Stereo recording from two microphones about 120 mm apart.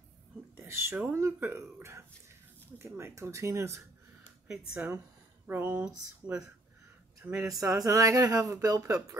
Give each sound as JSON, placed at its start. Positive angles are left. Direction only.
{"t": 0.6, "sound": "speech", "side_deg": -20}
{"t": 7.2, "sound": "speech", "side_deg": -25}